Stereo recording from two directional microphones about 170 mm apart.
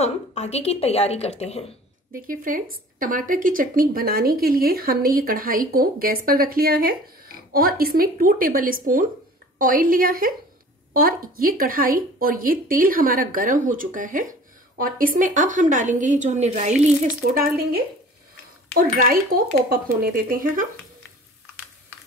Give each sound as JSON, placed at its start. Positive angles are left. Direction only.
{"t": 0.0, "sound": "a woman's voice", "side_deg": 40}
{"t": 2.1, "sound": "a woman's voice", "side_deg": -55}
{"t": 18.8, "sound": "a woman's voice", "side_deg": -55}